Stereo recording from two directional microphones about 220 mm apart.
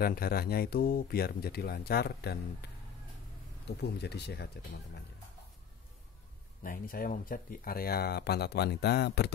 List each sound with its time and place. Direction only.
0.0 s speech: 45° left (ahead or behind)
3.6 s speech: 50° left (ahead or behind)
6.6 s speech: 40° left (ahead or behind)